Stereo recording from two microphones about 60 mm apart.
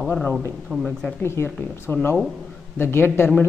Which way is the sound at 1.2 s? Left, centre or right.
Left.